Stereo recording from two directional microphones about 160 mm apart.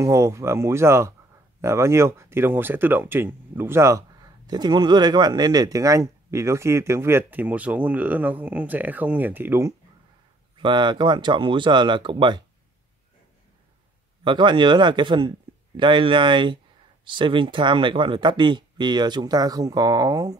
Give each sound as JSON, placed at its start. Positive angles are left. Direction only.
{"t": 0.0, "sound": "speech", "side_deg": -20}
{"t": 10.6, "sound": "speech", "side_deg": -30}
{"t": 14.2, "sound": "speech", "side_deg": -30}